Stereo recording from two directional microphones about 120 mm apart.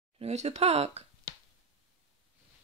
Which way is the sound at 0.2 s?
65° right (ahead or behind).